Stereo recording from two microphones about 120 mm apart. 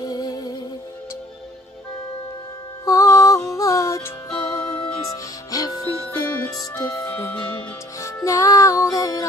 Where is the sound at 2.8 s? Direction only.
25° left (ahead or behind).